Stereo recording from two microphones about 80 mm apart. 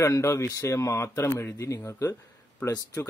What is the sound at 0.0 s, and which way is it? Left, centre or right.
Speech, left.